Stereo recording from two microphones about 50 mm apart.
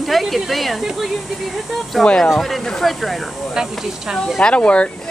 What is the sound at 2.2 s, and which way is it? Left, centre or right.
Speech, centre.